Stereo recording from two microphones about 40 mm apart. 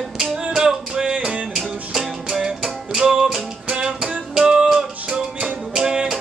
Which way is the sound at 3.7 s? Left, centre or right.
Right.